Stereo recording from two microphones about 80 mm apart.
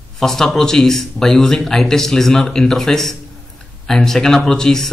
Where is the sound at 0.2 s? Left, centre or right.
Centre.